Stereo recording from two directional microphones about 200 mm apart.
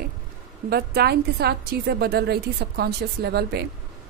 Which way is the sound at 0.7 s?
50° right (ahead or behind).